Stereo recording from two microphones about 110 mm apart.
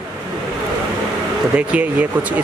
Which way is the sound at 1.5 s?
10° right (ahead or behind).